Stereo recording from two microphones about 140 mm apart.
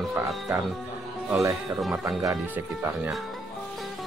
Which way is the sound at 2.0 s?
25° right (ahead or behind).